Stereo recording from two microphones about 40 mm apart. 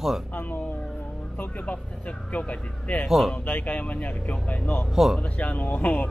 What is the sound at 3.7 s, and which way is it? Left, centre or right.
Speech, left.